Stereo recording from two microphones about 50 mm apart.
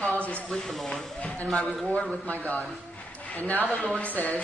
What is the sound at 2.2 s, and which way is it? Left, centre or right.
A woman's voice, left.